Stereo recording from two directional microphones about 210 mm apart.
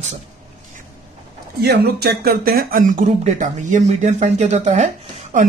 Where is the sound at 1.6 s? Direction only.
50° right (ahead or behind); by 4.8 s 35° right (ahead or behind).